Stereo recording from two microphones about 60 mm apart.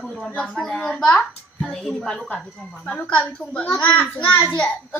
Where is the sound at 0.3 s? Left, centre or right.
Left.